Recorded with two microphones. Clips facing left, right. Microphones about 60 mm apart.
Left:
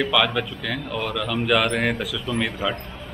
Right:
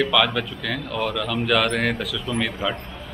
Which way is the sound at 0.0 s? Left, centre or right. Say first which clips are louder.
Right 1 dB; centre.